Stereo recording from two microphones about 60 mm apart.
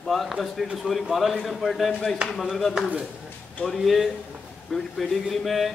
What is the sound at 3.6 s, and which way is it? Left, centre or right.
Speech, centre.